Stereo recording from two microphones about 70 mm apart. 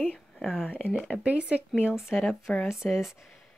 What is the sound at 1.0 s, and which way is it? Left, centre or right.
Speech, centre.